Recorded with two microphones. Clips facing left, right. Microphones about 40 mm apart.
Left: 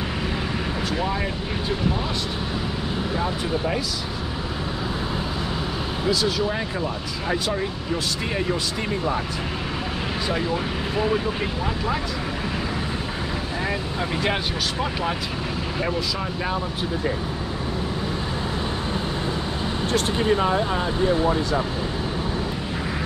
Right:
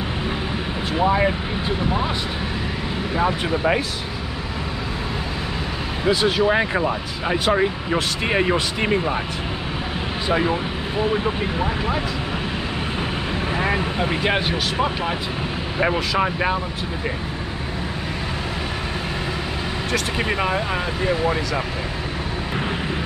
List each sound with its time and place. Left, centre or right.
1.0 s speech: right
3.2 s speech: right
6.0 s speech: right
10.3 s speech: right
14.2 s speech: centre
15.8 s speech: right